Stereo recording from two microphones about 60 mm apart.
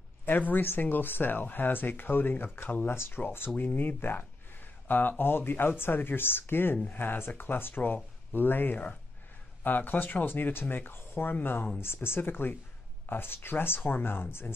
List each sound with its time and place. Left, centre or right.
0.2 s speech: left